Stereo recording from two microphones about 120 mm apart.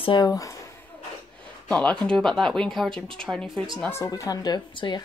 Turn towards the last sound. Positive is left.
turn(degrees=35)  # may be behind; listen again after turning